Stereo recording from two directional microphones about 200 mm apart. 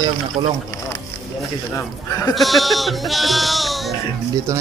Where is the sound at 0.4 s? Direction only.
20° right (ahead or behind).